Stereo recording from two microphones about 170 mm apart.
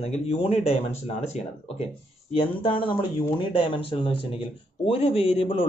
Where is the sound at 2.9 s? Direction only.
30° left (ahead or behind).